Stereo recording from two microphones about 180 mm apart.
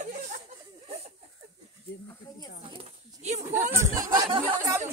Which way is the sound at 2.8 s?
40° right (ahead or behind).